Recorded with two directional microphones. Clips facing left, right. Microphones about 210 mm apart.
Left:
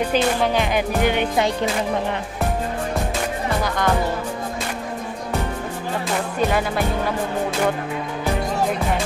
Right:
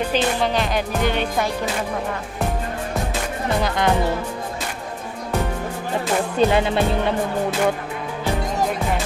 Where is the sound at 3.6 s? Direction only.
20° right (ahead or behind).